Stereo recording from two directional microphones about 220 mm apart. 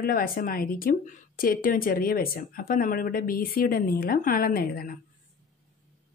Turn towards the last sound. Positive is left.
turn(degrees=40)  # may be behind; listen again after turning